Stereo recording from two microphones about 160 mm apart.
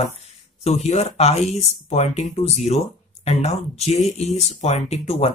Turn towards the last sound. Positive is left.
turn(degrees=40)  # may be behind; listen again after turning